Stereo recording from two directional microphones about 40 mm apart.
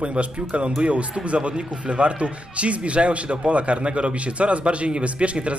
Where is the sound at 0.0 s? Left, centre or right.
Right.